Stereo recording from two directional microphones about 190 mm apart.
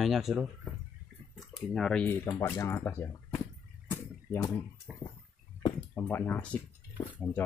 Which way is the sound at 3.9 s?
10° left (ahead or behind).